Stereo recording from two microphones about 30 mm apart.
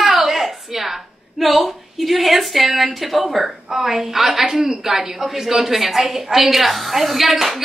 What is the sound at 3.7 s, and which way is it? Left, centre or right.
A woman's voice, centre.